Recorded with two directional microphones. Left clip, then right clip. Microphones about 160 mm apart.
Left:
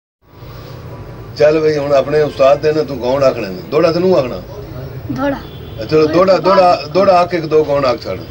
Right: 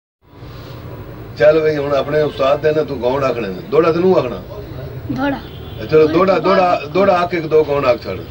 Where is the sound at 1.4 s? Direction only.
50° left (ahead or behind).